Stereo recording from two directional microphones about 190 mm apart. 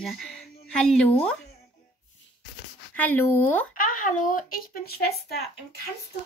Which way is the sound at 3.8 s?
45° left (ahead or behind).